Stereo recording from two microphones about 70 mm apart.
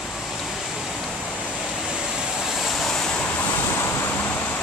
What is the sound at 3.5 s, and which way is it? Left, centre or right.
Waves, left.